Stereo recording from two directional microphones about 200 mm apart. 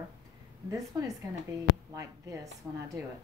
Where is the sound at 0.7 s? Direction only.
15° right (ahead or behind).